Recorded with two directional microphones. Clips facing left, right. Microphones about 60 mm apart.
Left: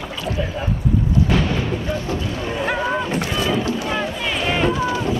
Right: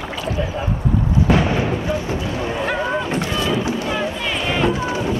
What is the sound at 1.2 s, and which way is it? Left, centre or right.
Artillery fire, centre.